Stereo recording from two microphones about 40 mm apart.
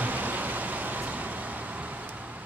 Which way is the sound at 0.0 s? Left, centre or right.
Right.